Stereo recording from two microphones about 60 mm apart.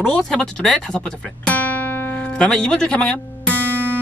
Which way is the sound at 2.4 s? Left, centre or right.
Centre.